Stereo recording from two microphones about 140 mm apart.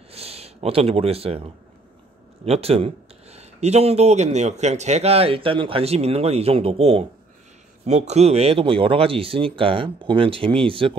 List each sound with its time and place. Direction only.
0.1 s speech: 45° right (ahead or behind)